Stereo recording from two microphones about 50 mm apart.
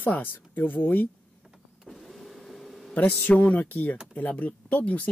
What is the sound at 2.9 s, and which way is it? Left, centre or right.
Speech, left.